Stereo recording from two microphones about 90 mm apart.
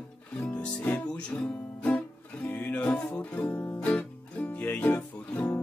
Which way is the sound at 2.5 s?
20° left (ahead or behind).